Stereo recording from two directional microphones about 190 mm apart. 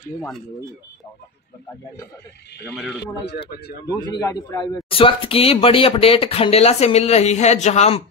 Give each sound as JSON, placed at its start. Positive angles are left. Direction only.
{"t": 2.7, "sound": "speech", "side_deg": 0}
{"t": 3.3, "sound": "speech", "side_deg": 60}
{"t": 3.8, "sound": "a man's voice", "side_deg": 20}